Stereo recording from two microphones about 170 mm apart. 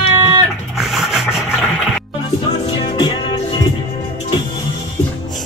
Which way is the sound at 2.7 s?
25° left (ahead or behind).